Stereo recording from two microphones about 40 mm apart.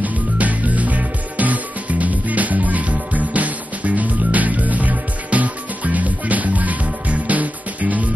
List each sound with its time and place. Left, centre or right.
0.0 s music: right